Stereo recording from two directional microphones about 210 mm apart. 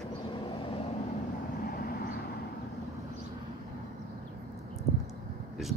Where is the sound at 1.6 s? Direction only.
45° left (ahead or behind).